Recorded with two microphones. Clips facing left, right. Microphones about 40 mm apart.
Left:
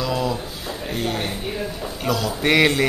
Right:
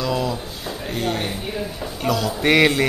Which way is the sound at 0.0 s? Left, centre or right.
Centre.